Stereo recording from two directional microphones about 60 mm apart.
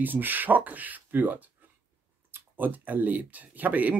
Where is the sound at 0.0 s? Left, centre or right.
Right.